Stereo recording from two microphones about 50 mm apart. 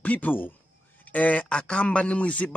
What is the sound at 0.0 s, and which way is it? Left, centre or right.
A man's voice, left.